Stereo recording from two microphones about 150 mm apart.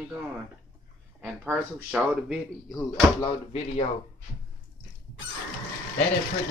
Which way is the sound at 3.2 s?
40° left (ahead or behind).